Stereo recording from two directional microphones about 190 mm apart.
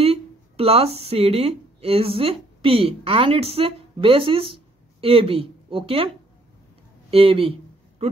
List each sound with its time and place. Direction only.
0.0 s speech: 30° right (ahead or behind)